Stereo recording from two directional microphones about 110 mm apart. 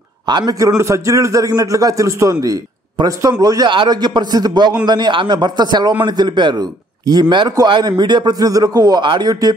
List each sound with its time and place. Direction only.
0.3 s a man's voice: 40° right (ahead or behind)